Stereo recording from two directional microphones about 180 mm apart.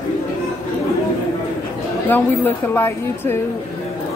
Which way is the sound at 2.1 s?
10° left (ahead or behind).